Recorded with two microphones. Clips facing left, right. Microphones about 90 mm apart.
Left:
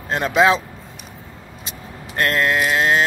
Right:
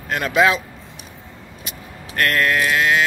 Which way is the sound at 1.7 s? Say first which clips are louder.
Left 1 dB; 25° left (ahead or behind).